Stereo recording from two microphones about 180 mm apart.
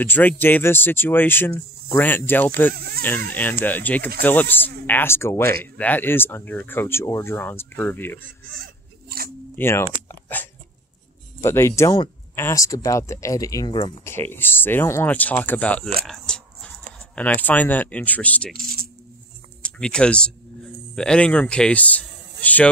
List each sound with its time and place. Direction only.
0.0 s speech: 10° left (ahead or behind)
2.7 s speech: 55° right (ahead or behind)
3.3 s speech: 10° left (ahead or behind)
9.6 s speech: 15° left (ahead or behind)
10.0 s a sound: 10° left (ahead or behind)
11.4 s speech: 15° left (ahead or behind)
14.0 s speech: 10° left (ahead or behind)
16.0 s a sound: 5° left (ahead or behind)
17.1 s speech: 10° left (ahead or behind)
18.5 s speech: 55° right (ahead or behind)
19.6 s speech: 5° left (ahead or behind)